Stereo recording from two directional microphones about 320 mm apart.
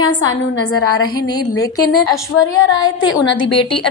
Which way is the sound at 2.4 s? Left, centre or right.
Centre.